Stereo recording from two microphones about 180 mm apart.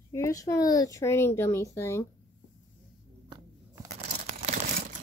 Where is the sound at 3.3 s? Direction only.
20° right (ahead or behind).